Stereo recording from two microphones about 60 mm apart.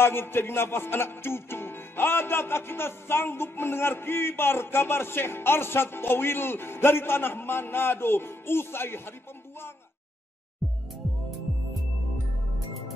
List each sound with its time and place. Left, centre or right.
0.0 s music: left
10.6 s music: centre